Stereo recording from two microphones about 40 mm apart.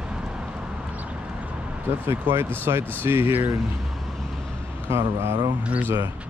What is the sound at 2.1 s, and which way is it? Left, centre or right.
Speech, right.